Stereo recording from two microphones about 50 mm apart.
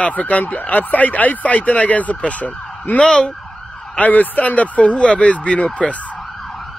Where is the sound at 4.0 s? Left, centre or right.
Left.